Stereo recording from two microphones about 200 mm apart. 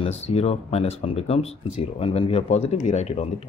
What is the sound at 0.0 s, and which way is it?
Speech, 30° left (ahead or behind).